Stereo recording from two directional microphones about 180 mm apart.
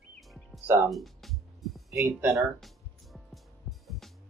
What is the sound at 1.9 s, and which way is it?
Speech, 15° right (ahead or behind).